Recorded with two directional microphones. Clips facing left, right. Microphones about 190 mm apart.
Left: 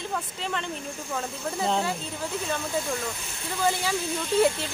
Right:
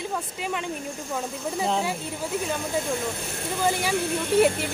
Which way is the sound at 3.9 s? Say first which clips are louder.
Right 4 dB; 60° right (ahead or behind).